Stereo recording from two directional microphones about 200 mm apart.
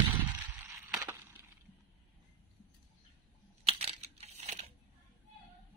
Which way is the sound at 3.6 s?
30° right (ahead or behind).